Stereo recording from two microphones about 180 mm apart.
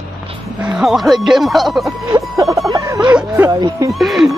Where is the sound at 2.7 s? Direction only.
15° right (ahead or behind).